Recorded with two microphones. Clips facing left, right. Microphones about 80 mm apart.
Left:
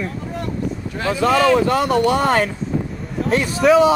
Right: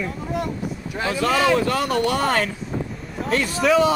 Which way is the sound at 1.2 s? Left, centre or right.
Left.